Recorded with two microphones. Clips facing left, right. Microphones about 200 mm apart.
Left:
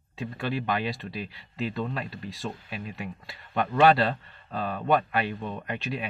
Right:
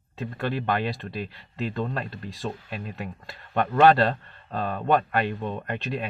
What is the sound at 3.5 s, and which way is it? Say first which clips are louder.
Speech: right 2 dB; 50° right (ahead or behind).